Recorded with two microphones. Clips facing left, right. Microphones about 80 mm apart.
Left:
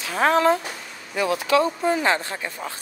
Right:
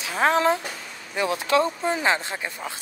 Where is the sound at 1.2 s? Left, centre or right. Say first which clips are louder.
Left 2 dB; right.